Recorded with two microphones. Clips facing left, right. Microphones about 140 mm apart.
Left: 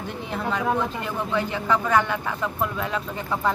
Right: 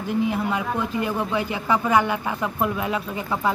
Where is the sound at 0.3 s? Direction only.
10° right (ahead or behind).